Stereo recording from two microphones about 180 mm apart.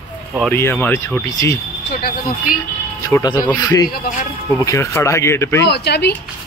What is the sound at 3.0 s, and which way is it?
A man's voice, 20° left (ahead or behind).